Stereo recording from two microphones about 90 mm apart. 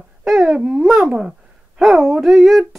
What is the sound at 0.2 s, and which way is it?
Wail, 5° right (ahead or behind).